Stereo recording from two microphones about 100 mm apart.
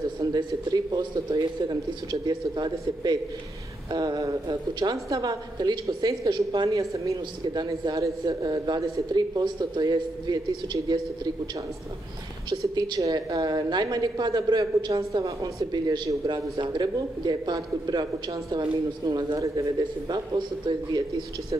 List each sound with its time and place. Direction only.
0.2 s a man's voice: 40° right (ahead or behind)
12.4 s a man's voice: 45° right (ahead or behind)
14.9 s a woman's voice: 35° right (ahead or behind)
20.1 s a man's voice: 50° right (ahead or behind)